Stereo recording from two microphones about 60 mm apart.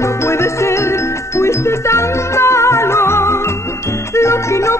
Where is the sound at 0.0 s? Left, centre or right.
Left.